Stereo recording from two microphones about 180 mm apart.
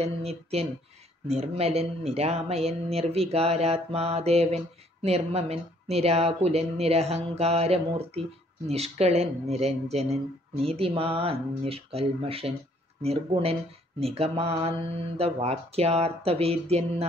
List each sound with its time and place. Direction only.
0.0 s speech: 35° right (ahead or behind)